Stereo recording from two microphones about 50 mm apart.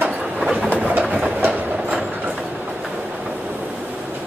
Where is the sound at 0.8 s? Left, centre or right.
Right.